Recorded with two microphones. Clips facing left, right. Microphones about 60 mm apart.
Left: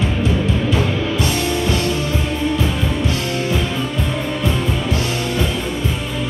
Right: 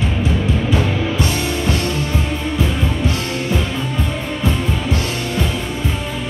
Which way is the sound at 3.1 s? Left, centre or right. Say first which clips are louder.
Left 1 dB; centre.